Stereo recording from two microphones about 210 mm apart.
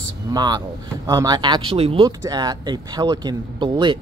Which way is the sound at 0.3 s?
20° right (ahead or behind).